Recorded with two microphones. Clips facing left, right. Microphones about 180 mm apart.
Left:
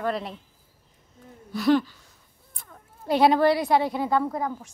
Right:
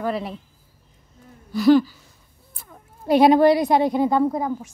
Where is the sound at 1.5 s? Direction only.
Centre (ahead or behind).